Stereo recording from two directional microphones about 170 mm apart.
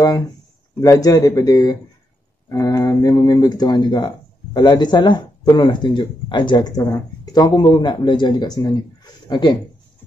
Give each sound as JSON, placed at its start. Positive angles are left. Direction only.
{"t": 0.7, "sound": "speech", "side_deg": 20}